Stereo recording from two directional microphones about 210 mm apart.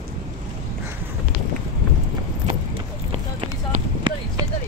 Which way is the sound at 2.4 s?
35° right (ahead or behind).